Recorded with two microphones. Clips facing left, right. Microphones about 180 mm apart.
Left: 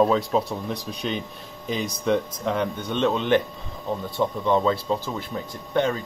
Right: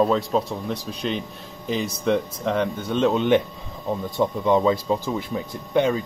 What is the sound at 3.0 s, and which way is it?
Speech, 10° right (ahead or behind).